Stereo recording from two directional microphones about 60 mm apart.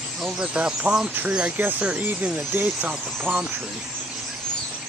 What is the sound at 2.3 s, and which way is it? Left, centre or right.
Speech, right.